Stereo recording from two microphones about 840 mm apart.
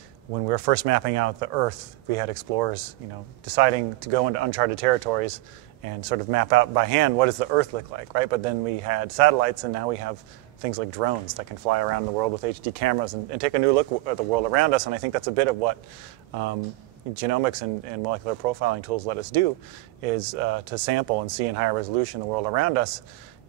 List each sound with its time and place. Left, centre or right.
0.5 s speech: right
17.1 s speech: right